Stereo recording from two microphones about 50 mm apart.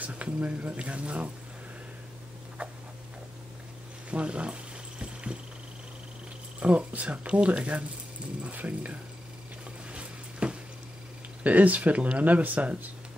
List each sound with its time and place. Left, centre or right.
0.0 s speech: right
2.6 s tick-tock: right
4.1 s music: right
6.6 s speech: right
9.8 s a sound: right
11.4 s speech: right